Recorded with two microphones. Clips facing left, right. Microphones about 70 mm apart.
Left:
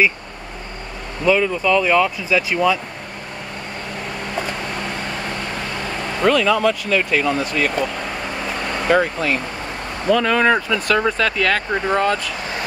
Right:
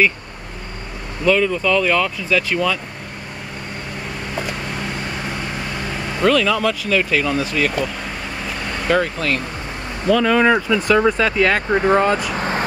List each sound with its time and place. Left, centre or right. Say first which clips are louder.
1.2 s speech: even; centre
4.4 s vehicle: even; centre
6.1 s speech: even; centre
12.4 s vehicle: right 5 dB; right